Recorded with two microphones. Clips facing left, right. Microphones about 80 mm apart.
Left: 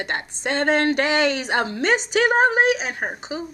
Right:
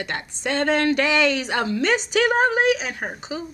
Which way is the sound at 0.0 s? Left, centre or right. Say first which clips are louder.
Left 1 dB; left.